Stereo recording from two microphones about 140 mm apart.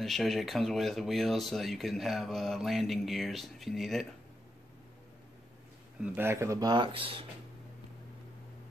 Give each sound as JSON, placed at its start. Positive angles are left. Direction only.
{"t": 0.0, "sound": "speech", "side_deg": 0}
{"t": 6.0, "sound": "speech", "side_deg": -15}